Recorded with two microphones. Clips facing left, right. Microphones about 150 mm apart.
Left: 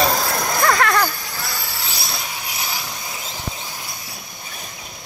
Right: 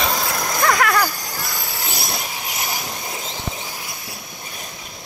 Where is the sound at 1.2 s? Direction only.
40° right (ahead or behind).